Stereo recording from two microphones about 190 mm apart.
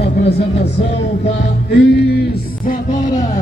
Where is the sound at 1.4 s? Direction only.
60° left (ahead or behind).